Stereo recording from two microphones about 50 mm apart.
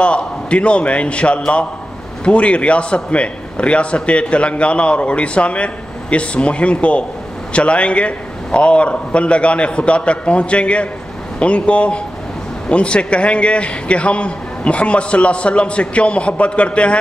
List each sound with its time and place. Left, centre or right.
0.0 s a man's voice: left